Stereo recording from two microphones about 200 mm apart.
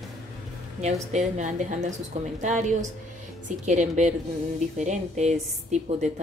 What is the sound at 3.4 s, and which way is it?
A woman's voice, 35° right (ahead or behind).